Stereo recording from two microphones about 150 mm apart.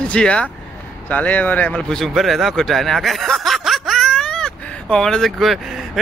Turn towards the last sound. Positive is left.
turn(degrees=0)  # may be behind; listen again after turning